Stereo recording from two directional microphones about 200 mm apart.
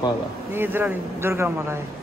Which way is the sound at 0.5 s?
10° right (ahead or behind).